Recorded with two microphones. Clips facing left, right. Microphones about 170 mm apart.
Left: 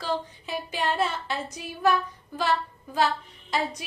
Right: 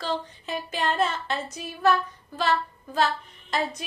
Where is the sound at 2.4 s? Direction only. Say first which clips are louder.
Right 1 dB; 10° left (ahead or behind).